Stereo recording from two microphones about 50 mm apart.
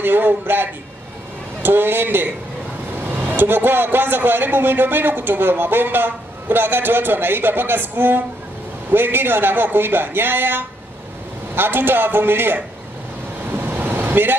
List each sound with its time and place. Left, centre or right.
0.0 s a man's voice: right
13.5 s vehicle: right